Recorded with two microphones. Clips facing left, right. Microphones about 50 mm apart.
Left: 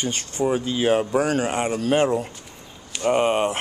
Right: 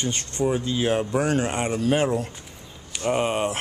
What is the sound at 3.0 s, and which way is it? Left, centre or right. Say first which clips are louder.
Speech: left 4 dB; centre.